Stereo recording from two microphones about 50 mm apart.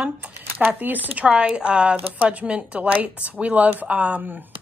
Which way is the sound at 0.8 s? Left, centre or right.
Right.